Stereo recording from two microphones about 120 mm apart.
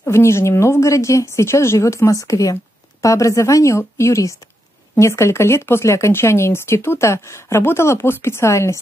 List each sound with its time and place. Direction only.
0.0 s a woman's voice: 20° left (ahead or behind)